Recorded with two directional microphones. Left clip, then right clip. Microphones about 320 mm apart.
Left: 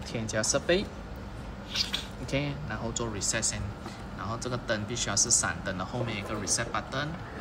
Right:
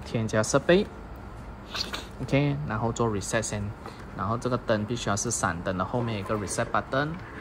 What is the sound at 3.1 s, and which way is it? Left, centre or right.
Speech, centre.